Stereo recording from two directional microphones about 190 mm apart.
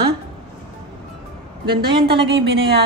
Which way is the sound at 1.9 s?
30° right (ahead or behind).